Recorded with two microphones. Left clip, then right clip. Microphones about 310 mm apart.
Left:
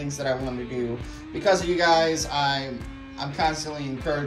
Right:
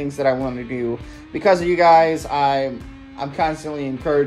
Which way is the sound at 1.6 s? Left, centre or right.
Centre.